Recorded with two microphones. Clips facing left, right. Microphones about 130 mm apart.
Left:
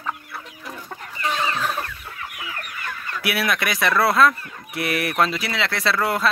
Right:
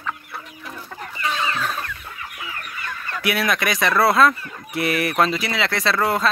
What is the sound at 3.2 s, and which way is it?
Speech, 5° left (ahead or behind).